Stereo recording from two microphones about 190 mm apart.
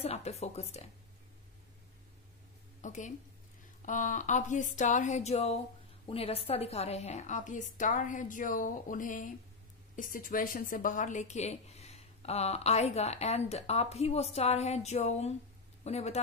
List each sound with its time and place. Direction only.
0.0 s speech: 35° left (ahead or behind)
2.8 s a woman's voice: 40° left (ahead or behind)